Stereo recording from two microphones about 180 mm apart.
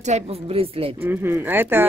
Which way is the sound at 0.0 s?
35° right (ahead or behind).